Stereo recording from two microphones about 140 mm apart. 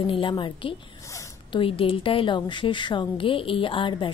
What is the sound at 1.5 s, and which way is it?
A woman's voice, 40° left (ahead or behind).